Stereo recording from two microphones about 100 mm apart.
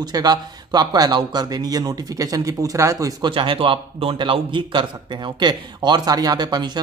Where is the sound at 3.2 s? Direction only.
60° right (ahead or behind).